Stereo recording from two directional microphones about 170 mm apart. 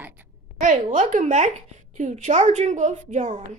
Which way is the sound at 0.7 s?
45° right (ahead or behind).